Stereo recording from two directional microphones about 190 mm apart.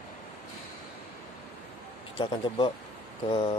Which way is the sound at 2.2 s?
25° left (ahead or behind).